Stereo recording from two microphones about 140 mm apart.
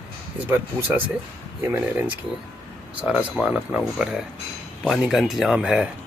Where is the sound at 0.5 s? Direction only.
15° right (ahead or behind).